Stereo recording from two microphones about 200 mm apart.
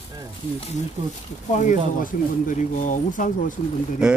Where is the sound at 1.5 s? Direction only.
40° left (ahead or behind).